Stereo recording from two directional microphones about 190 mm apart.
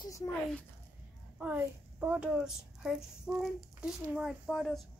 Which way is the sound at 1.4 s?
10° right (ahead or behind).